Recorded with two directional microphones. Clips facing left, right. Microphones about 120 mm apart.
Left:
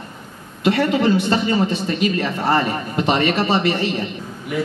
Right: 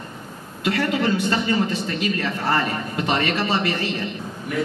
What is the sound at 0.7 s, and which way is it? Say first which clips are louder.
A man's voice: left 5 dB; 25° left (ahead or behind).